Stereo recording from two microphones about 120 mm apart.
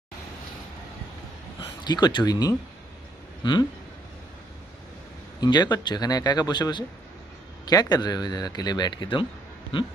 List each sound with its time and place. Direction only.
1.6 s speech: 35° left (ahead or behind)
5.4 s speech: 35° left (ahead or behind)